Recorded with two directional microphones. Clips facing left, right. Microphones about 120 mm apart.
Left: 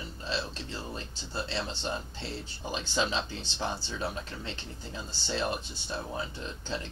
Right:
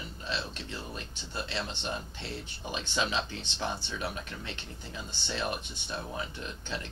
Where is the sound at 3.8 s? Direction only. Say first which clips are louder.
Left 1 dB; 25° left (ahead or behind).